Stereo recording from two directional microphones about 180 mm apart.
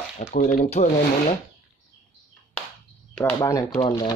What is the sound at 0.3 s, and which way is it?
Speech, 45° left (ahead or behind).